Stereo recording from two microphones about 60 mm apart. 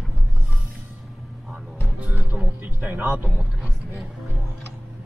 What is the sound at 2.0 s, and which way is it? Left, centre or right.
Music, right.